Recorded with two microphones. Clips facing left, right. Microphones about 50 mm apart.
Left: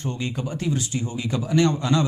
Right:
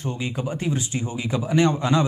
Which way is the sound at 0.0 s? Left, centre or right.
Centre.